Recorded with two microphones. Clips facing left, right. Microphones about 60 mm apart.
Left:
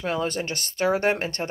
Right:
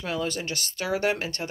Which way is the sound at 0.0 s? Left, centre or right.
Left.